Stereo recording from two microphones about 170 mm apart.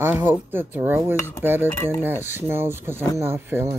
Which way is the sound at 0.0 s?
10° right (ahead or behind).